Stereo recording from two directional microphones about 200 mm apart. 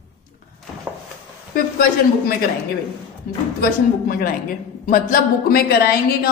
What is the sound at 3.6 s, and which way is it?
Speech, 45° left (ahead or behind).